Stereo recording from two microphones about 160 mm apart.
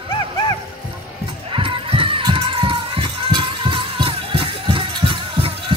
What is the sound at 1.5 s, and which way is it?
Music, 35° right (ahead or behind).